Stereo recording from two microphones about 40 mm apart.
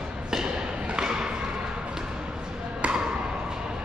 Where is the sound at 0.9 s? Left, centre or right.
Right.